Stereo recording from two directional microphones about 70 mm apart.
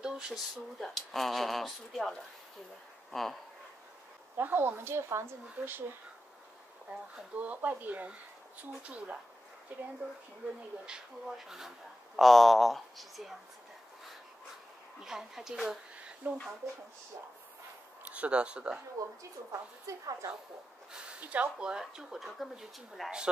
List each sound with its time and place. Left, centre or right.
0.0 s speech: centre
0.7 s speech: centre
4.4 s a woman's voice: right
6.9 s speech: centre
10.4 s speech: centre
15.0 s speech: centre
16.2 s speech: right
18.1 s speech: centre
19.0 s a woman's voice: right
20.9 s speech: centre